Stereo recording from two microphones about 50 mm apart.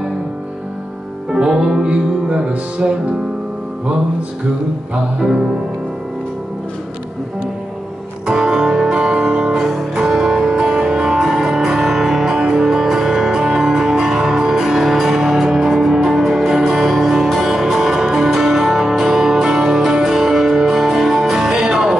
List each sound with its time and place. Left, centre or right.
1.3 s music: centre
5.2 s music: centre
8.3 s music: centre